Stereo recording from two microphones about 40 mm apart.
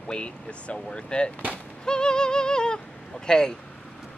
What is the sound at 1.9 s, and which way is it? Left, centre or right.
Music, centre.